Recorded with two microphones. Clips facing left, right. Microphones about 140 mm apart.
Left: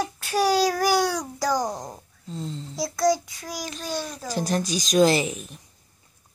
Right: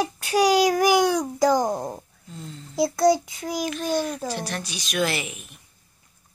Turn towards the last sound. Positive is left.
turn(degrees=35)  # may be behind; listen again after turning